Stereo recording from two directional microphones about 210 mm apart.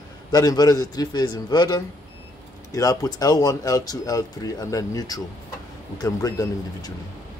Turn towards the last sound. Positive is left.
turn(degrees=15)  # may be behind; listen again after turning